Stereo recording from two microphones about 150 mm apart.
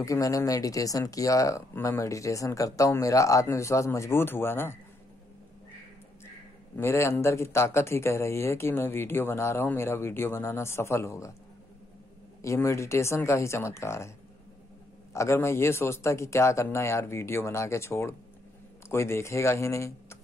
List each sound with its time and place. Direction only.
0.0 s speech: 20° left (ahead or behind)
6.8 s speech: 15° left (ahead or behind)
12.4 s speech: 20° left (ahead or behind)
15.1 s speech: 20° left (ahead or behind)